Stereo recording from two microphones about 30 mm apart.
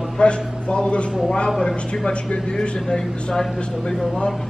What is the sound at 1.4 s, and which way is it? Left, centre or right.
Speech, centre.